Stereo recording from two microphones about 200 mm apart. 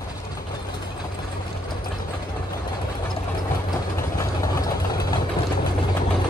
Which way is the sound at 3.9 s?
15° left (ahead or behind).